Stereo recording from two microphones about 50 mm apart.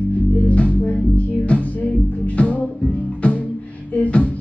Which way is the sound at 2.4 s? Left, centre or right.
Left.